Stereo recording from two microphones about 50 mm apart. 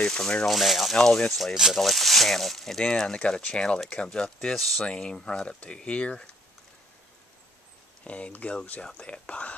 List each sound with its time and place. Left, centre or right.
0.1 s speech: centre
0.5 s speech: centre
1.3 s speech: centre
2.8 s speech: centre
8.0 s speech: left